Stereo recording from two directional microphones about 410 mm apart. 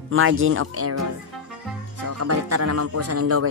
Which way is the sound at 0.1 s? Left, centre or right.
Right.